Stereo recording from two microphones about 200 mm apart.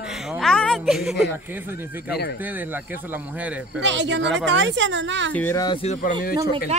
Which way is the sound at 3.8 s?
65° right (ahead or behind).